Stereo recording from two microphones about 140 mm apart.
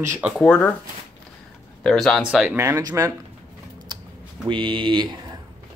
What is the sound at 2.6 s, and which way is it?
Speech, 20° right (ahead or behind).